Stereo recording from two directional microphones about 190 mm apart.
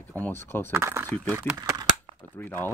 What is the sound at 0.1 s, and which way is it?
Speech, 10° left (ahead or behind).